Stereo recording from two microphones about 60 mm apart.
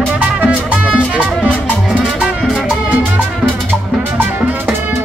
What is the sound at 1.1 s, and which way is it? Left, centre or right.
Music, left.